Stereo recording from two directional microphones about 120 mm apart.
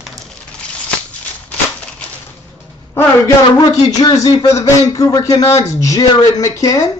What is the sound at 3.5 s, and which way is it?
Speech, 35° left (ahead or behind).